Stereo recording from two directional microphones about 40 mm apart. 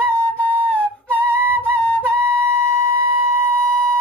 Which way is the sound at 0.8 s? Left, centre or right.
Left.